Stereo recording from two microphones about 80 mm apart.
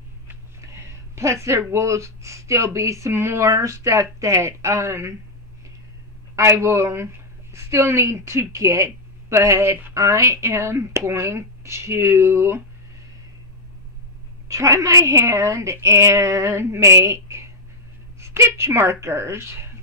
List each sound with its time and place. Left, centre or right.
0.6 s speech: right
6.3 s speech: right
14.5 s speech: right